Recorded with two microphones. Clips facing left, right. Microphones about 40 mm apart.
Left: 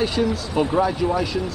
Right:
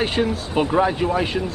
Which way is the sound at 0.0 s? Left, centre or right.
Right.